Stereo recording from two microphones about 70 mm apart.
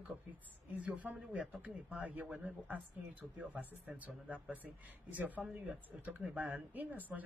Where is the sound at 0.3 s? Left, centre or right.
Right.